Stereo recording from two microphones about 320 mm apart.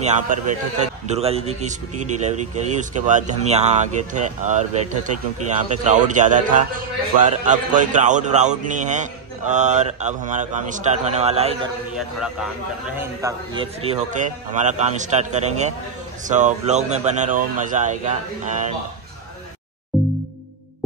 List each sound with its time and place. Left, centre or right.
0.0 s a man's voice: right
5.7 s a man's voice: right
11.9 s a man's voice: centre
13.0 s a man's voice: centre
19.9 s music: centre